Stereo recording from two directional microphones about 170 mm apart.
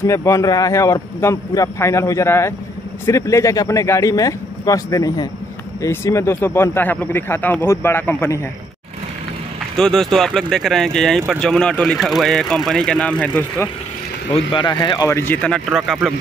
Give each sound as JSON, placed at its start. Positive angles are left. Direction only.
{"t": 0.0, "sound": "speech", "side_deg": 20}
{"t": 9.8, "sound": "speech", "side_deg": 5}
{"t": 14.3, "sound": "speech", "side_deg": 30}